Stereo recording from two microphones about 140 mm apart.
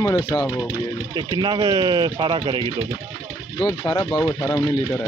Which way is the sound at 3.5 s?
25° left (ahead or behind).